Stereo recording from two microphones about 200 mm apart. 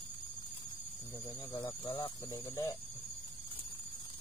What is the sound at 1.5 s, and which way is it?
Speech, 15° left (ahead or behind).